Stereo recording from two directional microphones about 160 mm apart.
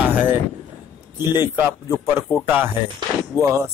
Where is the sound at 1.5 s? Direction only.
15° right (ahead or behind).